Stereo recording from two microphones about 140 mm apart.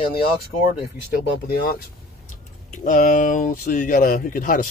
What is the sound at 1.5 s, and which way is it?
Speech, 90° left.